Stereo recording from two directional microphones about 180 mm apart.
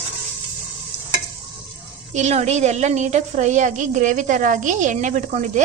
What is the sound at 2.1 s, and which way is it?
A woman's voice, 40° right (ahead or behind).